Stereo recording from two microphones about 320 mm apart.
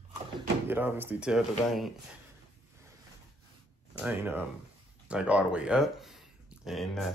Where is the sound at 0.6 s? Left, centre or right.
Centre.